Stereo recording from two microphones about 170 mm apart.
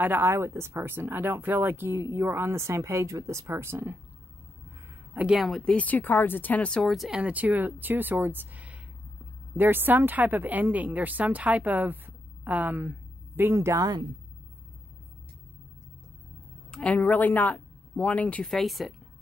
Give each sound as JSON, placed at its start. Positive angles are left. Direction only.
{"t": 0.0, "sound": "speech", "side_deg": -15}
{"t": 5.1, "sound": "speech", "side_deg": -5}
{"t": 16.7, "sound": "speech", "side_deg": 5}